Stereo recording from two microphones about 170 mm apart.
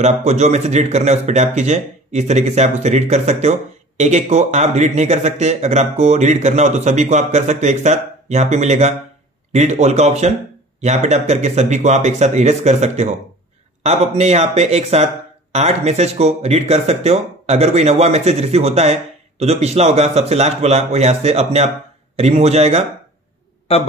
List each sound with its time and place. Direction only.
0.0 s speech: 40° right (ahead or behind)